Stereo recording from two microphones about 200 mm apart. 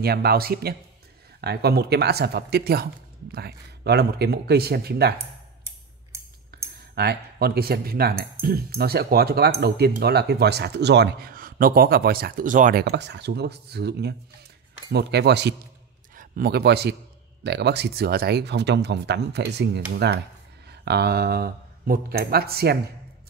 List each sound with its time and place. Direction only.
0.0 s speech: 50° right (ahead or behind)
6.5 s clicking: 50° right (ahead or behind)
7.0 s a man's voice: 50° right (ahead or behind)